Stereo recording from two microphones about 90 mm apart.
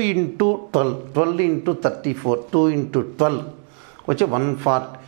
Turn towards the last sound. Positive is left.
turn(degrees=-20)  # may be behind; listen again after turning